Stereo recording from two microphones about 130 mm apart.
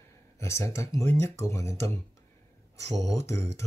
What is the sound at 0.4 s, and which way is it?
Speech, 20° left (ahead or behind).